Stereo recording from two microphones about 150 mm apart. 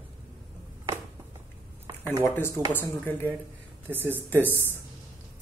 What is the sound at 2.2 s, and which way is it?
A man's voice, 15° left (ahead or behind).